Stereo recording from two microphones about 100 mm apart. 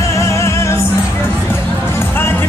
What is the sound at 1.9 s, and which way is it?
Music, 25° left (ahead or behind).